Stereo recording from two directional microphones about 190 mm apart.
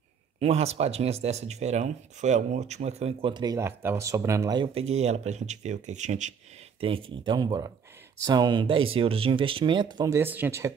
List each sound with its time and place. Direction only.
0.4 s speech: 35° right (ahead or behind); by 4.6 s 20° right (ahead or behind)
4.7 s speech: 35° right (ahead or behind)
6.8 s speech: 30° right (ahead or behind); by 10.7 s 10° right (ahead or behind)